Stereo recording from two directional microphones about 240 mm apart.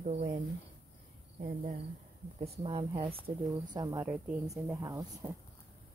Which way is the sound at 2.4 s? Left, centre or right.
Right.